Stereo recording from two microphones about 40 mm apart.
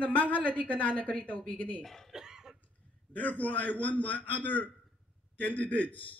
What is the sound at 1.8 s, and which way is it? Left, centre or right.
Speech, centre.